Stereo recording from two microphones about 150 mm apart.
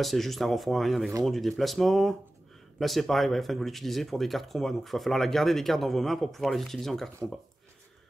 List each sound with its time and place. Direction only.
0.0 s speech: centre (ahead or behind)